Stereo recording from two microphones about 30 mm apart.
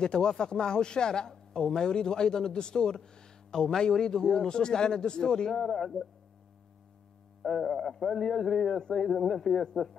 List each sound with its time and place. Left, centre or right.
0.0 s a man's voice: left
5.5 s speech: centre
7.4 s speech: centre
8.2 s a man's voice: centre
9.0 s speech: centre